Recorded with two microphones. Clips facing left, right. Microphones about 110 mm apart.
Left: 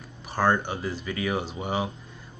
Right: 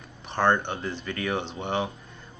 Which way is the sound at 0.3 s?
5° left (ahead or behind).